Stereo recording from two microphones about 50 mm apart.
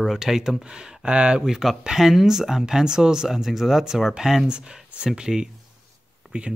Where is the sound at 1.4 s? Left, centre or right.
Centre.